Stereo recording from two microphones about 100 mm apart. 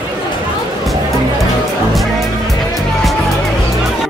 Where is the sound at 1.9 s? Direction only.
Centre (ahead or behind).